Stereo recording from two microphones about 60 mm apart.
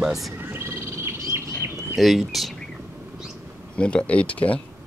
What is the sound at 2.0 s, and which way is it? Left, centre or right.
Speech, centre.